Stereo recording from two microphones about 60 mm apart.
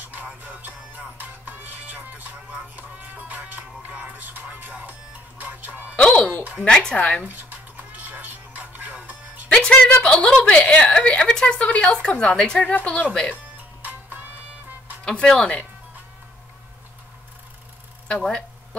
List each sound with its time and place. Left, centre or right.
0.1 s music: right
5.4 s speech: right
5.9 s a woman's voice: centre
7.2 s music: right
9.8 s a woman's voice: left
13.8 s music: right
15.0 s speech: centre
18.0 s speech: centre